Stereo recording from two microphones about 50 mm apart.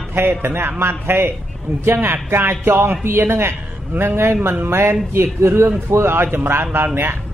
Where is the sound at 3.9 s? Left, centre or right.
Right.